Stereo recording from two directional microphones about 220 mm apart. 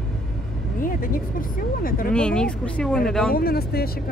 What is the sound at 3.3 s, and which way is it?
Speech, 45° left (ahead or behind).